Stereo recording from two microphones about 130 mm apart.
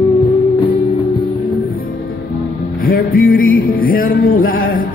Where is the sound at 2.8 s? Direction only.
90° left.